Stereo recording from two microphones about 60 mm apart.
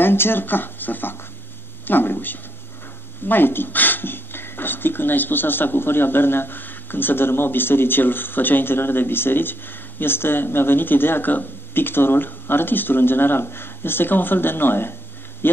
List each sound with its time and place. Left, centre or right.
0.0 s speech: left